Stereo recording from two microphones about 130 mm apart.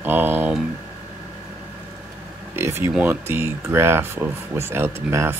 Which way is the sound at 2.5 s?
20° right (ahead or behind).